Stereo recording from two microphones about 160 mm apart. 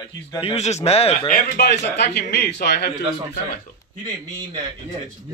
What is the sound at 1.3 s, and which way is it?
A man's voice, 60° left (ahead or behind).